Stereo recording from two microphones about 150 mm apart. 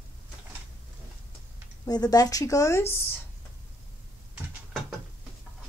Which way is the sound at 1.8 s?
25° left (ahead or behind).